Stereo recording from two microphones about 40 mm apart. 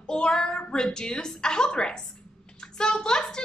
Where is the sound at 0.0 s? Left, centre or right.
Centre.